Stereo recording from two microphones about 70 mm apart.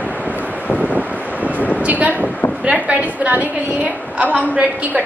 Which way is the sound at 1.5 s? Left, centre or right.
Left.